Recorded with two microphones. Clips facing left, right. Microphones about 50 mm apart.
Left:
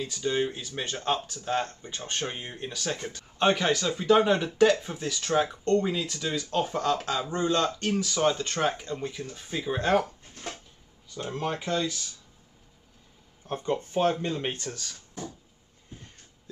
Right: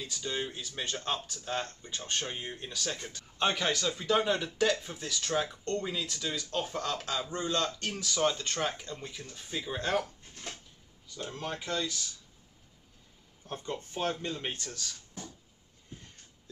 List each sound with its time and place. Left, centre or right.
0.0 s speech: left
11.1 s speech: left
13.5 s speech: left